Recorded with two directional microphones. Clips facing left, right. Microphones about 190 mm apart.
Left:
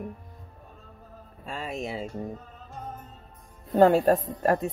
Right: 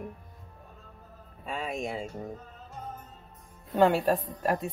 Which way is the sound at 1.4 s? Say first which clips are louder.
Even; centre (ahead or behind).